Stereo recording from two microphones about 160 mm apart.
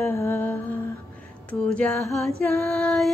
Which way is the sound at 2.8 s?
5° left (ahead or behind).